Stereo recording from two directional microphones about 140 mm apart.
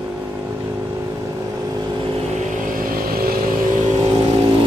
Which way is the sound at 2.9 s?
90° right.